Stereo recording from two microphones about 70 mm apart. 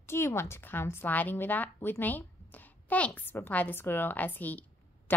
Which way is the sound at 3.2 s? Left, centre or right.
Left.